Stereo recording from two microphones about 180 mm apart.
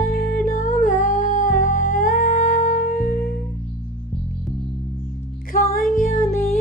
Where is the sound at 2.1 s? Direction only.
45° left (ahead or behind).